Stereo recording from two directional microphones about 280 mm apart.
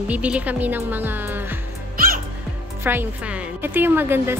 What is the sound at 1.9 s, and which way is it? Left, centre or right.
Music, right.